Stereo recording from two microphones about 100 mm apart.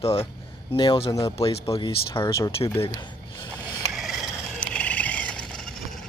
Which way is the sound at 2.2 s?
30° left (ahead or behind).